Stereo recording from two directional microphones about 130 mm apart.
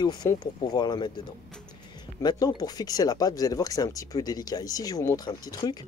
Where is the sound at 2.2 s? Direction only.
30° left (ahead or behind).